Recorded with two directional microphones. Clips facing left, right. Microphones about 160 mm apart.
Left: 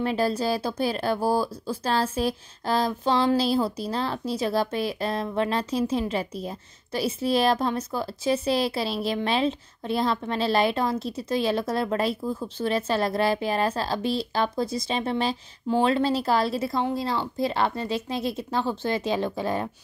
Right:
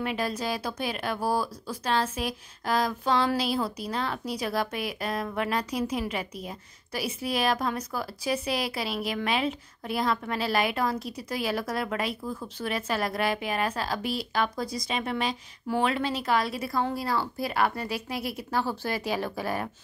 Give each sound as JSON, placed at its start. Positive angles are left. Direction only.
{"t": 0.0, "sound": "speech", "side_deg": 30}